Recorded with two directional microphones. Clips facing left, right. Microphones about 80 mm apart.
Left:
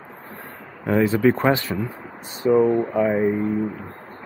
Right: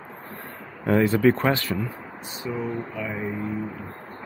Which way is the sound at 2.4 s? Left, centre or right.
Left.